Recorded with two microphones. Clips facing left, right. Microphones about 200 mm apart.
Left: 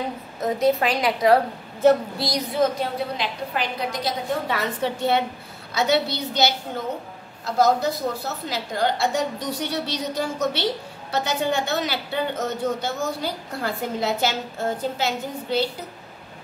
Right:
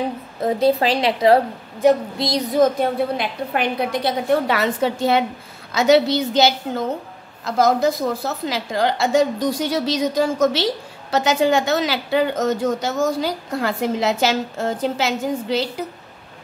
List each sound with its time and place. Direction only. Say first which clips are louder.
0.4 s a woman's voice: right 3 dB; 30° right (ahead or behind)
2.5 s a woman's voice: right 6 dB; 55° right (ahead or behind); by 6.2 s 90° right
7.4 s a woman's voice: right 3 dB; 90° right